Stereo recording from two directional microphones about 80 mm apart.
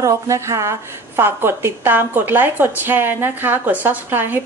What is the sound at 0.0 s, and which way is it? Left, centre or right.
A woman's voice, right.